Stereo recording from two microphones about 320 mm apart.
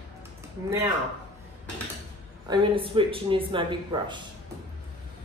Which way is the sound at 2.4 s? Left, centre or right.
Centre.